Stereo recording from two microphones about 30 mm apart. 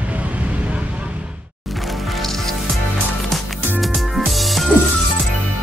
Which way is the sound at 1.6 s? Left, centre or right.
Centre.